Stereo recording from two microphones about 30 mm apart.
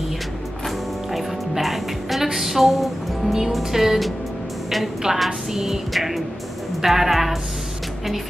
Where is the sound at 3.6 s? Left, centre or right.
Centre.